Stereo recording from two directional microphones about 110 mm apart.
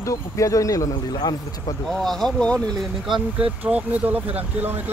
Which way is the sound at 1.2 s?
45° left (ahead or behind).